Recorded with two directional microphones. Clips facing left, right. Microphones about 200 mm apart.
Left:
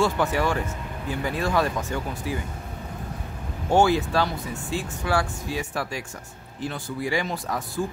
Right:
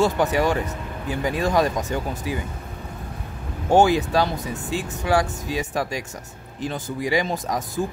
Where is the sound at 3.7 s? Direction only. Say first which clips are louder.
Right 3 dB; 15° right (ahead or behind).